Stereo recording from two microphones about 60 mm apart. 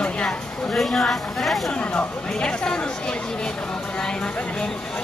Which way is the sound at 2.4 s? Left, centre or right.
Centre.